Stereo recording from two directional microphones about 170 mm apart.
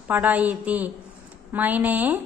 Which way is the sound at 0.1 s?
10° right (ahead or behind).